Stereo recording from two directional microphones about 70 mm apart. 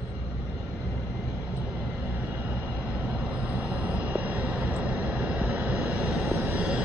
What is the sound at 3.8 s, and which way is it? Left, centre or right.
Vehicle, right.